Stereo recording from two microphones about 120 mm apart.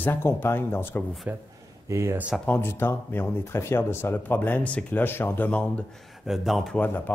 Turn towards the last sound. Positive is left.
turn(degrees=15)  # may be behind; listen again after turning